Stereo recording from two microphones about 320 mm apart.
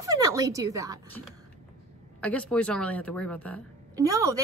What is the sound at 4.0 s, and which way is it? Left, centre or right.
Speech, centre.